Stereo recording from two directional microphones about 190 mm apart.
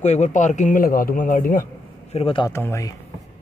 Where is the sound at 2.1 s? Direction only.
30° left (ahead or behind).